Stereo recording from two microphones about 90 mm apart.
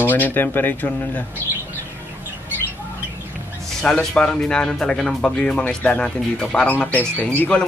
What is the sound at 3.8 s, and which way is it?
Speech, 10° left (ahead or behind).